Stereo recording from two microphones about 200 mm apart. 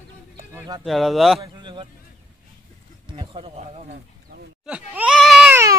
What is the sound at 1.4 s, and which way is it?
Speech, 25° right (ahead or behind).